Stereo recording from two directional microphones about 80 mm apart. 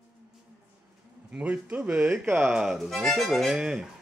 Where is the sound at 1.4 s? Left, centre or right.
Centre.